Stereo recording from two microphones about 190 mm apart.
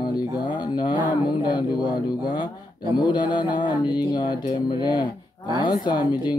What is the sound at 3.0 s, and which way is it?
Speech, 25° left (ahead or behind).